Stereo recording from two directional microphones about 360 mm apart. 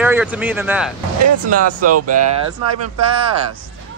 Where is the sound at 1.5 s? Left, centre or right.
Right.